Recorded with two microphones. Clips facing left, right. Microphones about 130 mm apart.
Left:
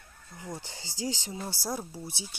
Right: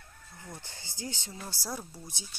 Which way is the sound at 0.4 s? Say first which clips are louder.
Left 7 dB; 20° left (ahead or behind).